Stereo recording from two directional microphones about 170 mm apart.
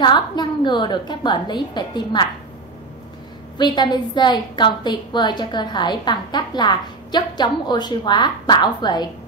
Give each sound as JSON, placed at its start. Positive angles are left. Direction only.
{"t": 0.0, "sound": "a woman's voice", "side_deg": 25}
{"t": 3.5, "sound": "a woman's voice", "side_deg": 25}